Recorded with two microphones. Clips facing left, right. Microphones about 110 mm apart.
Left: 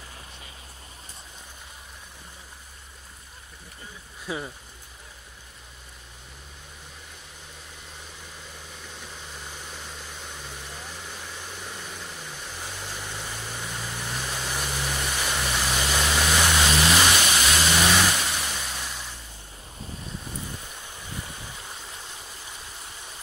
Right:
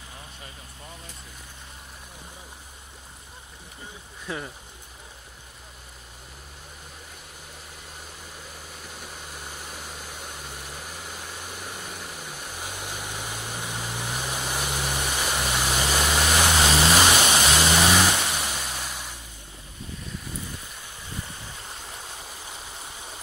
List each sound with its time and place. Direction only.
4.3 s speech: 10° left (ahead or behind)
8.8 s vehicle: 10° right (ahead or behind)
16.5 s vehicle: 30° right (ahead or behind)
17.7 s vehicle: 15° right (ahead or behind)